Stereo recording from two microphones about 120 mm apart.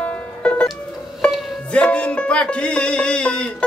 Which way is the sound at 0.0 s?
10° left (ahead or behind).